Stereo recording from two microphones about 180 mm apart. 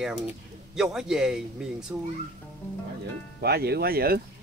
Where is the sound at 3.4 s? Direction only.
60° right (ahead or behind).